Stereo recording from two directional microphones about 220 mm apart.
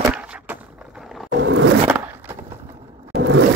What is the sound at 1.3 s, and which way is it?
Roar, 60° right (ahead or behind).